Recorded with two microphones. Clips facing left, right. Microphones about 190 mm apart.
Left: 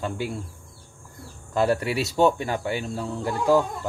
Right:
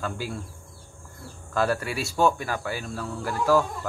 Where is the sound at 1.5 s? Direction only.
20° left (ahead or behind).